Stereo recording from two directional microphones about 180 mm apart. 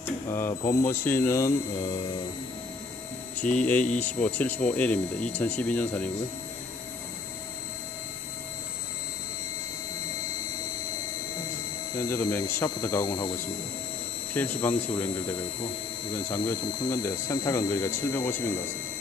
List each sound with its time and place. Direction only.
0.3 s speech: 15° left (ahead or behind)
3.3 s speech: 10° left (ahead or behind)
11.9 s speech: 15° left (ahead or behind)
14.3 s speech: 10° left (ahead or behind)
16.6 s speech: 20° left (ahead or behind)